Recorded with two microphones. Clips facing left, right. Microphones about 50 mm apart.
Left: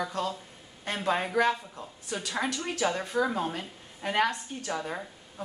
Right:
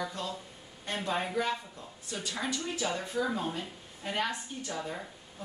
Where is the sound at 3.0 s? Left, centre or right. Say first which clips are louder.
Left 4 dB; left.